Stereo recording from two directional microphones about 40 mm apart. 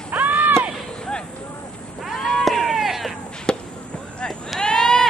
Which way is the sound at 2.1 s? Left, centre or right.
Centre.